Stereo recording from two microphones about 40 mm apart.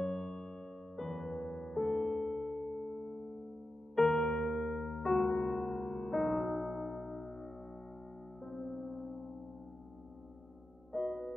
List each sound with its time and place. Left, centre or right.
0.0 s electric piano: centre
1.3 s music: left
1.6 s music: centre
3.9 s music: centre
4.5 s electric piano: centre
8.5 s music: centre
10.9 s music: centre